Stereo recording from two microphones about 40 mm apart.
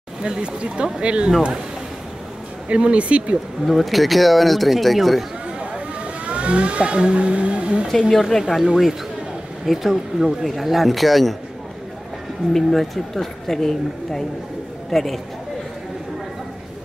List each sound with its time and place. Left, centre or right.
0.2 s speech: right
2.7 s speech: right
3.6 s speech: centre
6.2 s speech: right
8.1 s speech: centre
9.7 s speech: centre
12.5 s speech: centre